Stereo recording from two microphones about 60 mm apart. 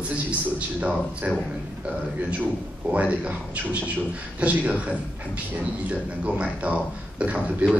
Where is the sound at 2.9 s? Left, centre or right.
Right.